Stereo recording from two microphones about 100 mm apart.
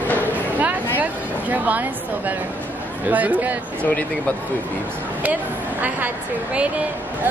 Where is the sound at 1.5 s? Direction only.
15° right (ahead or behind).